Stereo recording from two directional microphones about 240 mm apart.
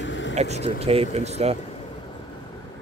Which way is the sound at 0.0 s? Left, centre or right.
Left.